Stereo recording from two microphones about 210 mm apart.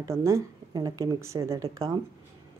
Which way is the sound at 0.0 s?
15° right (ahead or behind).